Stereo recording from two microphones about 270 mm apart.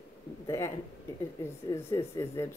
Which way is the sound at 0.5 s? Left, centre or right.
Centre.